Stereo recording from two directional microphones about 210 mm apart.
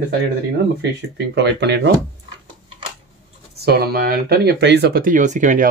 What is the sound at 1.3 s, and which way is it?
Speech, 55° right (ahead or behind).